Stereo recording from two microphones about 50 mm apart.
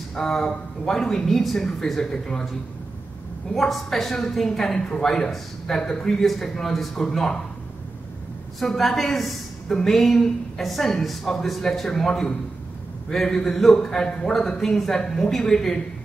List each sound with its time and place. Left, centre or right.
0.1 s a woman's voice: centre
3.5 s a woman's voice: centre
8.5 s a woman's voice: centre